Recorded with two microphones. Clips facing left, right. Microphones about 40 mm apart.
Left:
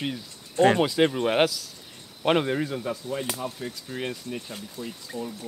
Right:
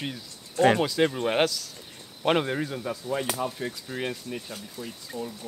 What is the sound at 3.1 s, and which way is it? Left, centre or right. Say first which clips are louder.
Speech: right 2 dB; centre.